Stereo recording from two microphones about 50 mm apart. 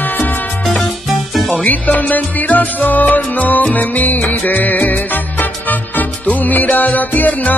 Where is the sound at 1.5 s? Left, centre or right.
Left.